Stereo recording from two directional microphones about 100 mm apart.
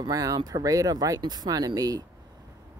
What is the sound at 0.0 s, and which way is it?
Speech, 40° right (ahead or behind).